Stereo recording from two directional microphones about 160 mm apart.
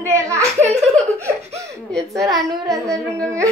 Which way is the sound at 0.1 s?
20° right (ahead or behind).